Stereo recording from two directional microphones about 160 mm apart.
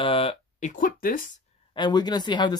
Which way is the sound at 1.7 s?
25° left (ahead or behind).